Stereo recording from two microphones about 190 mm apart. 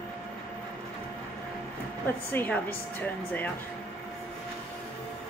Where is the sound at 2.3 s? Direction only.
10° left (ahead or behind).